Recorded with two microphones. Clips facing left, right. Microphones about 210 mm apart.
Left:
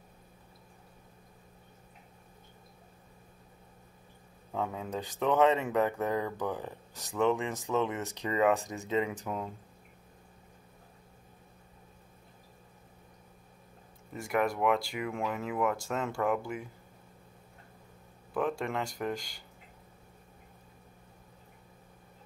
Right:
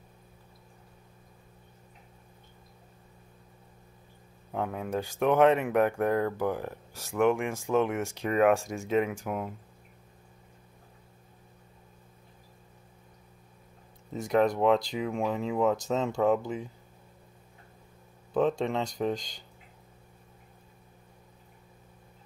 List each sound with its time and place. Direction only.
4.5 s speech: 15° right (ahead or behind)
14.1 s speech: 20° right (ahead or behind)
18.3 s speech: 20° right (ahead or behind)